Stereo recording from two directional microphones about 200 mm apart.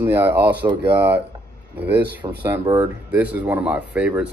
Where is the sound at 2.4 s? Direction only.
10° right (ahead or behind).